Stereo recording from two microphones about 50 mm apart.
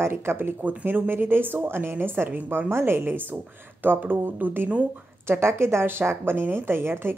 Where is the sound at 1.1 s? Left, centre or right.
Right.